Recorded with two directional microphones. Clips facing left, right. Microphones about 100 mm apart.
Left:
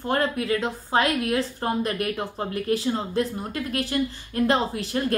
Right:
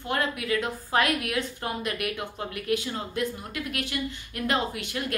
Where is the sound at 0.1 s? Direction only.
35° left (ahead or behind).